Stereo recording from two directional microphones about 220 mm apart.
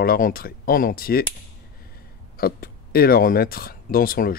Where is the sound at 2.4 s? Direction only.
40° left (ahead or behind).